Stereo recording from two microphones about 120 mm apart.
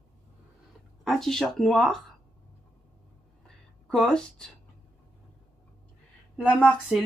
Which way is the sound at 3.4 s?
5° left (ahead or behind).